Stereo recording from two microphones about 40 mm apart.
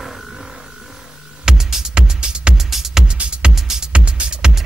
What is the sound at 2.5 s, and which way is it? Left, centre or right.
Music, centre.